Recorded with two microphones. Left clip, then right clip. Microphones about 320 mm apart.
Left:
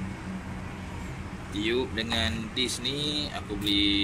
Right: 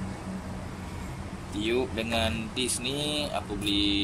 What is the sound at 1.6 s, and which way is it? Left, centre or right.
Speech, centre.